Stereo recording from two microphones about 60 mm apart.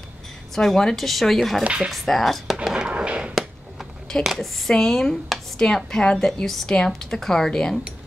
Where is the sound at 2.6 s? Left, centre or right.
Centre.